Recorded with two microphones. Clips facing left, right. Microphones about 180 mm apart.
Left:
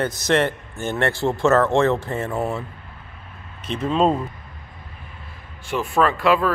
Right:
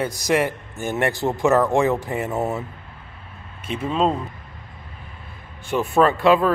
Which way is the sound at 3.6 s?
10° right (ahead or behind).